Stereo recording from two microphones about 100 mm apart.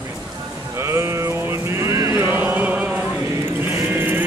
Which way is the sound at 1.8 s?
30° right (ahead or behind).